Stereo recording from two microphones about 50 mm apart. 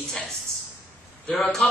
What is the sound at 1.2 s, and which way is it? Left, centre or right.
Speech, centre.